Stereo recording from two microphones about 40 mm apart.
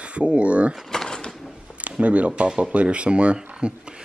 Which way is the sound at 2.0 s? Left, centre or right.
Right.